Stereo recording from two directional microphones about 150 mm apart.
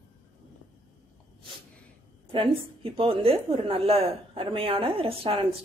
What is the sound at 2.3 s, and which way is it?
A woman's voice, 40° right (ahead or behind).